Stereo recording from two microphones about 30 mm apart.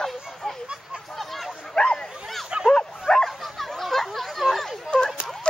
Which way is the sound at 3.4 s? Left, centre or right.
Centre.